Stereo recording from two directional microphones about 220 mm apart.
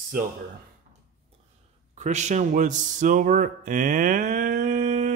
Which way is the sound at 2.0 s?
30° right (ahead or behind).